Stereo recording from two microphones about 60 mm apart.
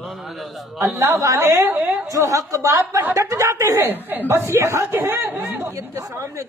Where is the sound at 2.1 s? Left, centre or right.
Right.